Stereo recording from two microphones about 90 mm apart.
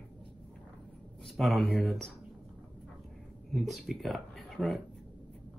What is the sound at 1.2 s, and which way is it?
Speech, centre (ahead or behind).